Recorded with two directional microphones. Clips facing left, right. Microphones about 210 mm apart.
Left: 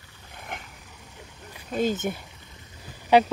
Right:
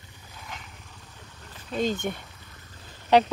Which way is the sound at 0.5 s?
55° left (ahead or behind).